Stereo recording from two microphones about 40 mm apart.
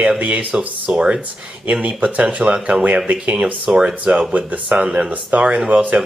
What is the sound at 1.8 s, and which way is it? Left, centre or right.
Speech, right.